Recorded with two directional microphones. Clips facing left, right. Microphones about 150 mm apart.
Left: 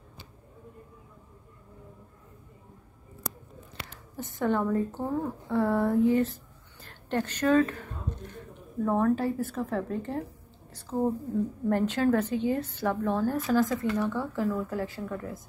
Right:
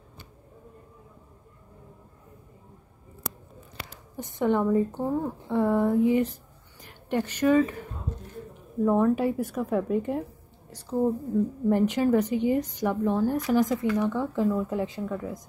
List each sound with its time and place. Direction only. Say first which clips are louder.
4.2 s a woman's voice: right 3 dB; 20° right (ahead or behind)
11.7 s a woman's voice: right 2 dB; 15° right (ahead or behind)